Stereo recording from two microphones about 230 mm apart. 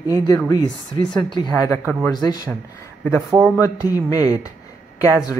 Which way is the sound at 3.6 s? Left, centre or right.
Centre.